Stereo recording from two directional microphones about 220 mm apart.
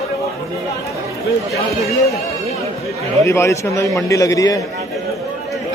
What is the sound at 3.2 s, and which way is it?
A man's voice, 15° left (ahead or behind).